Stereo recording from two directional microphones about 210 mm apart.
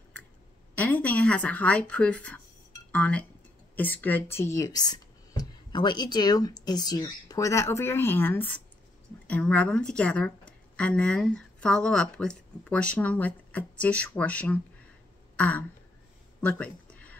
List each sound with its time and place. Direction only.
0.7 s speech: 5° left (ahead or behind)
15.3 s throat clearing: 5° left (ahead or behind)
16.3 s a sound: 5° left (ahead or behind)